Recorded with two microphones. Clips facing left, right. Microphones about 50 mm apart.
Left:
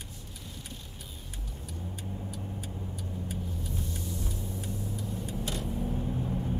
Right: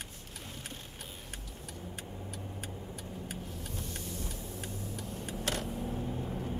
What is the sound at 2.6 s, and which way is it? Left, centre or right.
Vehicle, right.